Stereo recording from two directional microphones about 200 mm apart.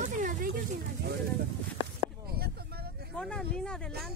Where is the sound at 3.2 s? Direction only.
5° left (ahead or behind).